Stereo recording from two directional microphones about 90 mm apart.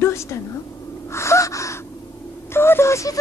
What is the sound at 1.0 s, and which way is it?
Gasp, 30° left (ahead or behind).